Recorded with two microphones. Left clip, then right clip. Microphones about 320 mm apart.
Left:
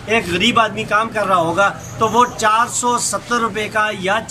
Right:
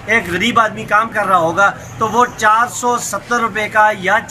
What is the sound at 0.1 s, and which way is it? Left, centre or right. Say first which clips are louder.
Speech: right 1 dB; centre.